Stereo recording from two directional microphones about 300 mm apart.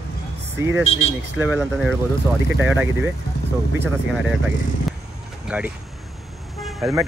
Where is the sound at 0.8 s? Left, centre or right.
Left.